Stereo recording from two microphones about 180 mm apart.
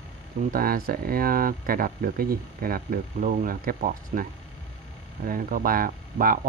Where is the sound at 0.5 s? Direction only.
55° right (ahead or behind).